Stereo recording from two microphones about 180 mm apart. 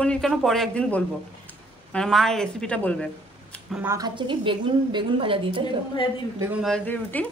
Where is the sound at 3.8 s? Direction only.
15° right (ahead or behind).